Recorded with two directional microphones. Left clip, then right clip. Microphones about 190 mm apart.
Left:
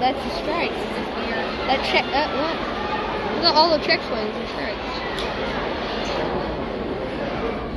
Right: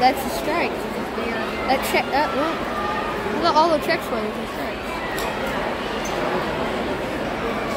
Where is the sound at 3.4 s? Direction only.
30° right (ahead or behind).